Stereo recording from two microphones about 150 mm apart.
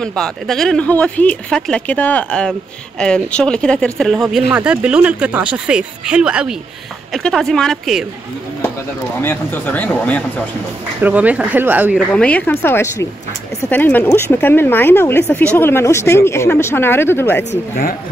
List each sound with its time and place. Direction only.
0.0 s speech: 5° left (ahead or behind)
9.2 s speech: 10° left (ahead or behind)
11.0 s speech: 10° right (ahead or behind)
12.1 s speech: 5° left (ahead or behind)